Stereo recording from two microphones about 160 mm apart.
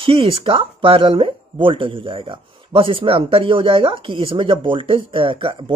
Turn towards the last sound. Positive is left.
turn(degrees=-35)  # may be behind; listen again after turning